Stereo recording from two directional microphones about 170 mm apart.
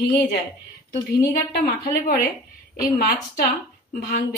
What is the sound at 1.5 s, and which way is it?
Speech, 65° left (ahead or behind).